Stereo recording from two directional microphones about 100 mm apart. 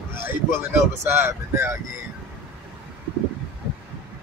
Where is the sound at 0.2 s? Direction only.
25° right (ahead or behind).